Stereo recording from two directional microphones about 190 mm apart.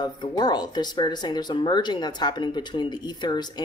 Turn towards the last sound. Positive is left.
turn(degrees=20)  # may be behind; listen again after turning